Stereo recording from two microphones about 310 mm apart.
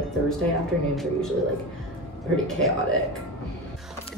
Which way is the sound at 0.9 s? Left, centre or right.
Centre.